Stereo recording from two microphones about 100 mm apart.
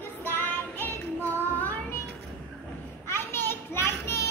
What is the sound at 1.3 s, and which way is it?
Child singing, 20° left (ahead or behind).